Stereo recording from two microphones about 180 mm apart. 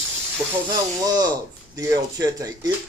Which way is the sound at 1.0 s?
20° right (ahead or behind).